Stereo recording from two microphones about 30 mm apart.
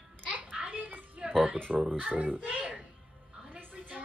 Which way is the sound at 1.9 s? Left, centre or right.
Right.